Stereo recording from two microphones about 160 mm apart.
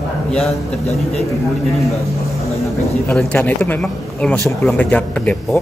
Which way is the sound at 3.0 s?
10° left (ahead or behind).